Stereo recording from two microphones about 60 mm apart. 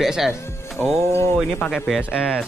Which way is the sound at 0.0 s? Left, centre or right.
Centre.